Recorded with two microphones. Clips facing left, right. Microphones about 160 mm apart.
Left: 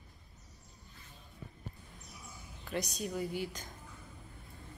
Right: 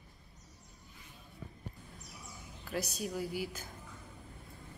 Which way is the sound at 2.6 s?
5° right (ahead or behind).